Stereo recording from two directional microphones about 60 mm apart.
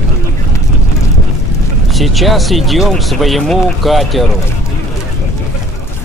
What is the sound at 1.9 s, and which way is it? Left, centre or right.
Speech, centre.